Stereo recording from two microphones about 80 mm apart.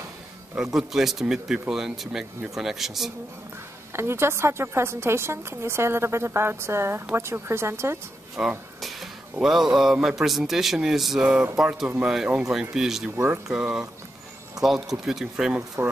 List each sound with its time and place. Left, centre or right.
0.6 s speech: centre
3.9 s a woman's voice: right
8.4 s speech: centre
8.8 s music: centre
9.9 s speech: centre
13.1 s speech: right
14.6 s speech: centre
15.8 s a woman's voice: right